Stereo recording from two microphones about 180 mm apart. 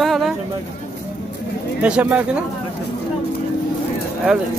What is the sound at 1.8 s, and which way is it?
Speech, 5° right (ahead or behind).